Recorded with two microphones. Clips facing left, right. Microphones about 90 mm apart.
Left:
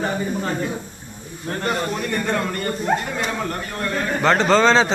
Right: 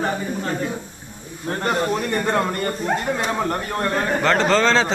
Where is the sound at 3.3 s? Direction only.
30° right (ahead or behind).